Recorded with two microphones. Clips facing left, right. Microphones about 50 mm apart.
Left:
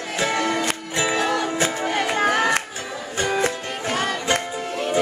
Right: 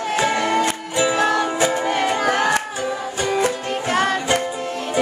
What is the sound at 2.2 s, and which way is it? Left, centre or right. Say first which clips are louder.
Music: right 1 dB; left.